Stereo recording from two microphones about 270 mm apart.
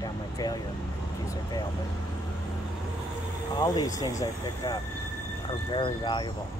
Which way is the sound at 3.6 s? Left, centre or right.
Centre.